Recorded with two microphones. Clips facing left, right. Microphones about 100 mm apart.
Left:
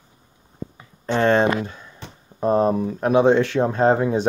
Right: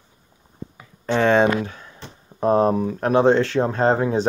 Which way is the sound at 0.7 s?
Centre (ahead or behind).